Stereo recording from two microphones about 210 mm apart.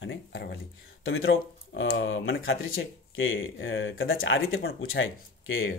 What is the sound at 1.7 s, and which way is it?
Speech, 65° left (ahead or behind).